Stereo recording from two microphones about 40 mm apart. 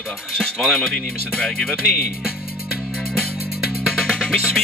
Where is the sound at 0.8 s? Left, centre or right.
Left.